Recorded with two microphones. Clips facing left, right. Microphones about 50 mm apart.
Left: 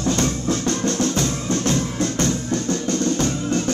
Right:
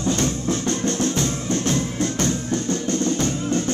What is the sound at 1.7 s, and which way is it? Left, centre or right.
Music, left.